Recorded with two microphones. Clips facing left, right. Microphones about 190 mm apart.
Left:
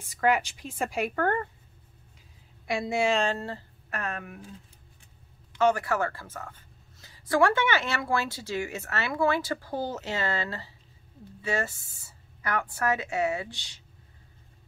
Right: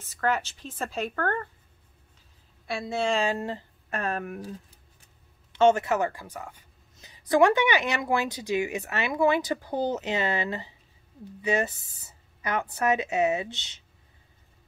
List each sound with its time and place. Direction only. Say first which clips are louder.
0.0 s a woman's voice: left 2 dB; 10° left (ahead or behind)
2.6 s a woman's voice: left 2 dB; 15° left (ahead or behind)
3.3 s speech: right 2 dB; 15° right (ahead or behind)
3.9 s speech: right 4 dB; 30° right (ahead or behind)
4.2 s speech: right 7 dB; 45° right (ahead or behind)
5.5 s speech: right 4 dB; 25° right (ahead or behind)